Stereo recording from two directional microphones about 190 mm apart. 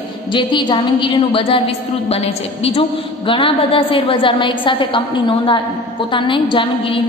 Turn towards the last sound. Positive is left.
turn(degrees=25)  # may be behind; listen again after turning